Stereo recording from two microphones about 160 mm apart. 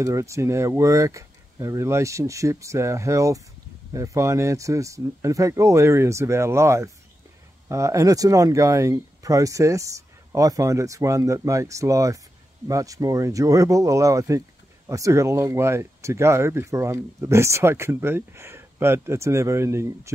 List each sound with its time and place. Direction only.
0.0 s speech: 20° right (ahead or behind)